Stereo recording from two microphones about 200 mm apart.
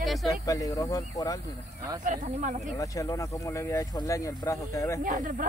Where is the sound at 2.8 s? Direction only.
15° left (ahead or behind).